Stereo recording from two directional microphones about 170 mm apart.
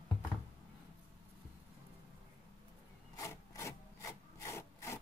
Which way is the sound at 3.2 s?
15° left (ahead or behind).